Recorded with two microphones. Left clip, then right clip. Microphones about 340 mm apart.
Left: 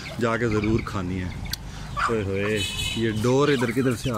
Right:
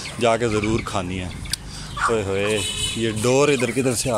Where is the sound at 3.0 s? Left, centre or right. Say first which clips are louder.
Right 4 dB; centre.